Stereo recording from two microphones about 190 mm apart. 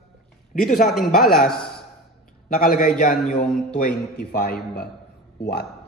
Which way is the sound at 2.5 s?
50° left (ahead or behind).